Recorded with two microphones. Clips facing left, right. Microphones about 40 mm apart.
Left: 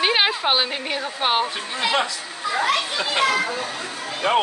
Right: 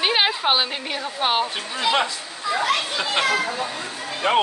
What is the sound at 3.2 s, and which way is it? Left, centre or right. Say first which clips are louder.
Speech: left 2 dB; centre.